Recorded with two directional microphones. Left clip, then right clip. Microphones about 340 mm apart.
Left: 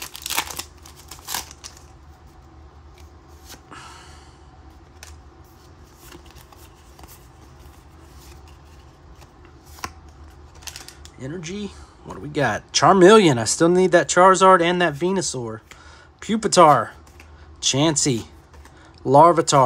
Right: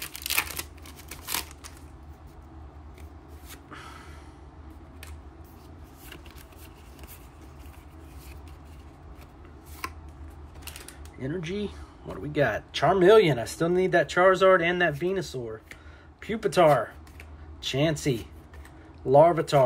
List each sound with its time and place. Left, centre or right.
0.0 s crumpling: centre
1.2 s a sound: centre
3.7 s gasp: centre
11.1 s speech: centre